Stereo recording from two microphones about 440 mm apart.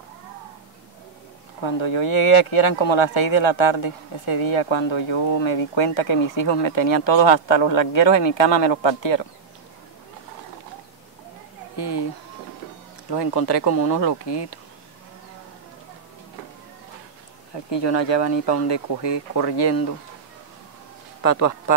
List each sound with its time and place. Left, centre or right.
1.6 s speech: left
11.7 s a sound: left
13.1 s speech: left
17.6 s speech: left
21.2 s a man's voice: left